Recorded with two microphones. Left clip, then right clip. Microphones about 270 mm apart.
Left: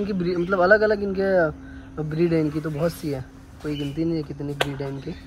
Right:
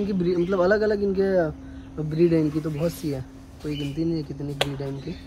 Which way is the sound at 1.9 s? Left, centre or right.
Centre.